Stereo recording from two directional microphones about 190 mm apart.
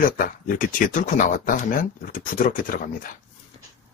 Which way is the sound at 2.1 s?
45° left (ahead or behind).